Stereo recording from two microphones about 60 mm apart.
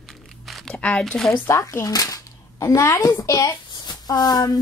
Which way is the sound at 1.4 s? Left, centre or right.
Left.